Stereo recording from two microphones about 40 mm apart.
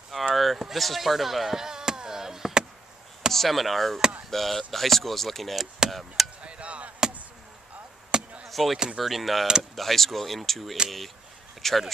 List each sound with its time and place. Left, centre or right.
0.1 s a sound: centre
3.3 s speech: centre
6.4 s chop: right
8.1 s chop: centre
8.5 s a sound: centre
8.9 s speech: centre